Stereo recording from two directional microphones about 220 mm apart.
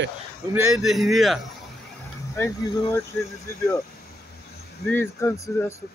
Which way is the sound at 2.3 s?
15° left (ahead or behind).